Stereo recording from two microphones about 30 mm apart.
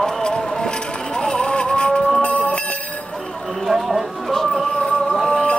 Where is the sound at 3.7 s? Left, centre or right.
Left.